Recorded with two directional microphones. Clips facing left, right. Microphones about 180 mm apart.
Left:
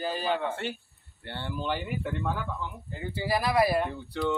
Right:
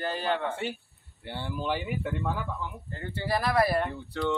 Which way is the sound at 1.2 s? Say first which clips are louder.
Right 1 dB; 5° right (ahead or behind).